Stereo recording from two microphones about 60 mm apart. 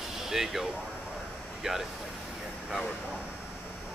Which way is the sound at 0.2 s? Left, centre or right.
Centre.